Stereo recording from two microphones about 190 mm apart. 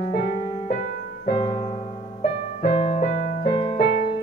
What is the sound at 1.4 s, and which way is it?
Music, 30° left (ahead or behind).